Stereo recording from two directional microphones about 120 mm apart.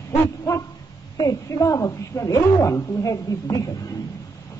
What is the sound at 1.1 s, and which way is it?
A man's voice, 30° left (ahead or behind).